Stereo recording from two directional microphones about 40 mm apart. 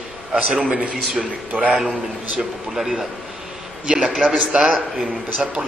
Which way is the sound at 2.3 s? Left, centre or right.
Centre.